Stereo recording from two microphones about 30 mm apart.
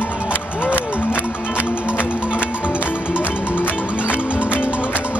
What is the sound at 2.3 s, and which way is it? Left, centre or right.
Music, left.